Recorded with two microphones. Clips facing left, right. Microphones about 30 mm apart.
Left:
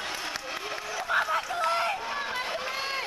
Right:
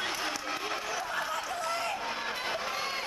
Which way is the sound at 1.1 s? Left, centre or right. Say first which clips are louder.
Left 6 dB; left.